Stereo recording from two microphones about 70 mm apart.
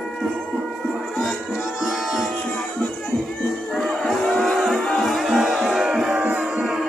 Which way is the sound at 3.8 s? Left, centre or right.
Centre.